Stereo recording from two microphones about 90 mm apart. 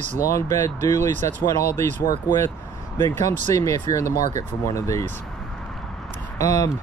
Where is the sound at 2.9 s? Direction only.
30° left (ahead or behind).